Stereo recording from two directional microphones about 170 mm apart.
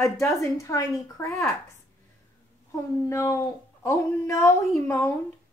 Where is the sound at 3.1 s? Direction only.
20° left (ahead or behind).